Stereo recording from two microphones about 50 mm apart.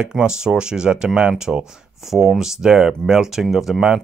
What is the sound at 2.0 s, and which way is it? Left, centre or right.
Speech, centre.